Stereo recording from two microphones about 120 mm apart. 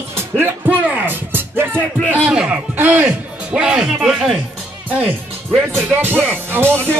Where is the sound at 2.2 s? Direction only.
10° right (ahead or behind).